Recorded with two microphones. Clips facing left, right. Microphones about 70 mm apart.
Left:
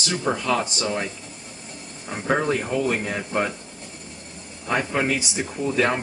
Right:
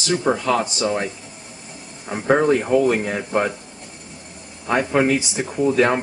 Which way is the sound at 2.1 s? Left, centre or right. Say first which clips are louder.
Right 6 dB; centre.